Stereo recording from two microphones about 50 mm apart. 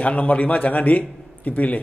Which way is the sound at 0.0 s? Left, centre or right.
Left.